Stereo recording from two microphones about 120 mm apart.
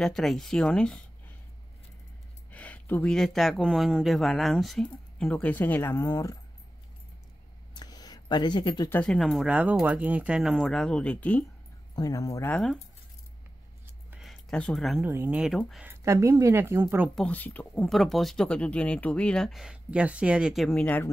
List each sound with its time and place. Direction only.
0.0 s speech: centre (ahead or behind)
2.5 s speech: 15° left (ahead or behind); by 6.3 s 30° left (ahead or behind)
7.7 s a sound: 35° left (ahead or behind)
9.0 s speech: 5° left (ahead or behind)
10.5 s speech: 5° left (ahead or behind)
11.9 s speech: 30° left (ahead or behind)
14.2 s a sound: 5° left (ahead or behind)
15.0 s speech: 20° right (ahead or behind)
15.4 s speech: centre (ahead or behind)
15.8 s speech: 20° right (ahead or behind)
17.1 s speech: 10° left (ahead or behind)
17.8 s speech: centre (ahead or behind)
20.7 s speech: 15° left (ahead or behind)